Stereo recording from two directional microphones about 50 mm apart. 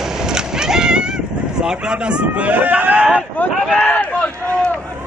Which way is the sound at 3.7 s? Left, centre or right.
Left.